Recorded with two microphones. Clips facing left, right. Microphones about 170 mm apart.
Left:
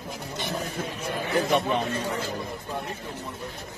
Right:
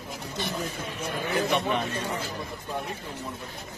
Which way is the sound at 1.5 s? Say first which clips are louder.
Left 2 dB; 35° left (ahead or behind).